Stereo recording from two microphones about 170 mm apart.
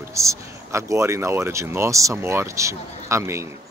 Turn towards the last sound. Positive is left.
turn(degrees=-15)  # may be behind; listen again after turning